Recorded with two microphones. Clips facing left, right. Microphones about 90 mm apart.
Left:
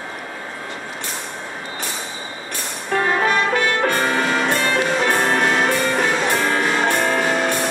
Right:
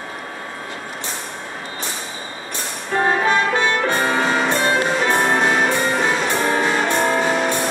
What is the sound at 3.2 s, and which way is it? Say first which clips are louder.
Music: right 1 dB; 25° right (ahead or behind).